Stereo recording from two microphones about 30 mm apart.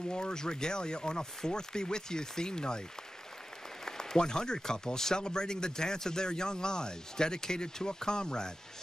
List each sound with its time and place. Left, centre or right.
0.1 s a man's voice: left
3.8 s a man's voice: centre